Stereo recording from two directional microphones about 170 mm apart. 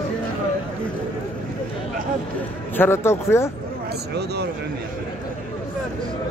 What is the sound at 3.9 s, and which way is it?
Speech, 75° right (ahead or behind).